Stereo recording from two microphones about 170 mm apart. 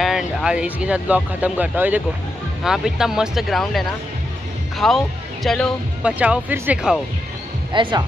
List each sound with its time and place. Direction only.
0.0 s speech: 5° right (ahead or behind)
7.7 s speech: 30° right (ahead or behind)